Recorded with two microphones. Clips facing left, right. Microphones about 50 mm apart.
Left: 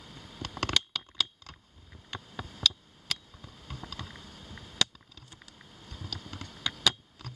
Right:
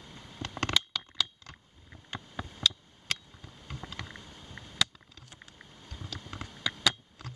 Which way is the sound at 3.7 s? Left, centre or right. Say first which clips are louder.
Right 1 dB; centre.